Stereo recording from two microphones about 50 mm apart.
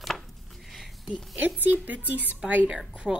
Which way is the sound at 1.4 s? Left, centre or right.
Right.